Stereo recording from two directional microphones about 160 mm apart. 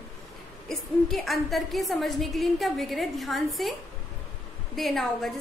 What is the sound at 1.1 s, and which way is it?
A woman's voice, centre (ahead or behind).